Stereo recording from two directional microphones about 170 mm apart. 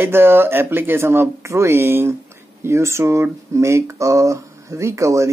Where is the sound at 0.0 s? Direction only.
15° right (ahead or behind).